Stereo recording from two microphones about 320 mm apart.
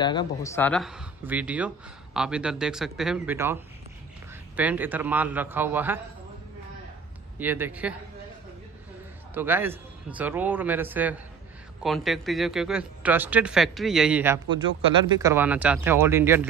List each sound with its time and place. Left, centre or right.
0.0 s speech: centre
7.3 s speech: centre
9.3 s speech: centre